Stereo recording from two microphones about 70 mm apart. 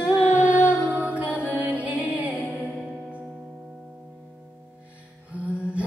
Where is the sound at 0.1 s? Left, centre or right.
Right.